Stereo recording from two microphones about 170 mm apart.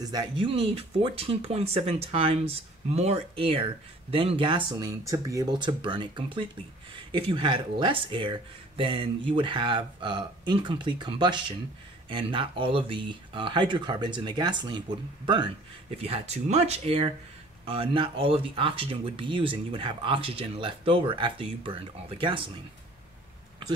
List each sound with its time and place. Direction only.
0.0 s speech: 25° right (ahead or behind)
16.0 s speech: 40° right (ahead or behind)